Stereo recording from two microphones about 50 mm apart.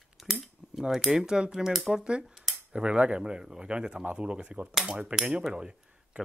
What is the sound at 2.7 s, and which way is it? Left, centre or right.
Speech, centre.